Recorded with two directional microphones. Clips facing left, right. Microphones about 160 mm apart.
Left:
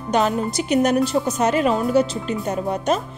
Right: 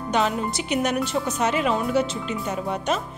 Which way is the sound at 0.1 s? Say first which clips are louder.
Left 4 dB; 40° left (ahead or behind).